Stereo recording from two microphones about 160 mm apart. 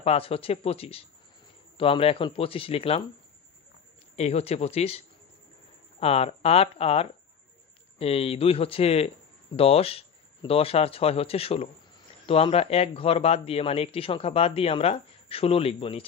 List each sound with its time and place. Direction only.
0.0 s speech: 40° left (ahead or behind)
4.2 s speech: 40° left (ahead or behind)